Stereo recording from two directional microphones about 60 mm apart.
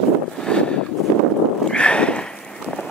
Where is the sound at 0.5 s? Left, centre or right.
Centre.